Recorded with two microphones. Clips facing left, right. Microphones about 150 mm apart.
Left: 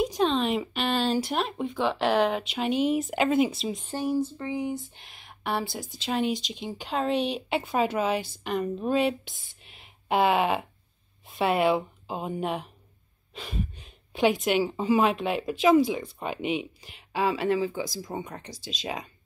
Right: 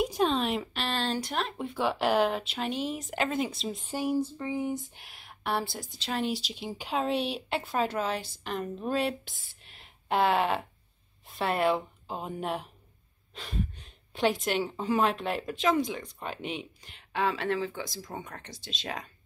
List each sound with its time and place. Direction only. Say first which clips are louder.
0.0 s a sound: left 2 dB; 10° right (ahead or behind)
1.7 s speech: left 1 dB; 10° right (ahead or behind)
3.8 s speech: left 1 dB; 10° right (ahead or behind); by 18.0 s 5° left (ahead or behind)
18.1 s speech: left 5 dB; 15° left (ahead or behind)
18.4 s speech: left 4 dB; centre (ahead or behind)